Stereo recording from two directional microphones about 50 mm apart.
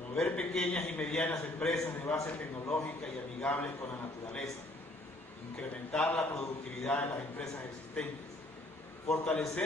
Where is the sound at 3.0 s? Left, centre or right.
Centre.